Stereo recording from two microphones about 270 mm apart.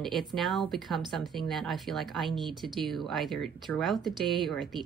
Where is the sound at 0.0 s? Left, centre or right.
Centre.